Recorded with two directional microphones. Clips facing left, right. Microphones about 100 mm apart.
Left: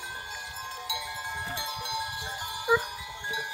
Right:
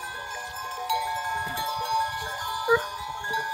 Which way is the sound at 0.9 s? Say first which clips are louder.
Right 12 dB; 45° right (ahead or behind).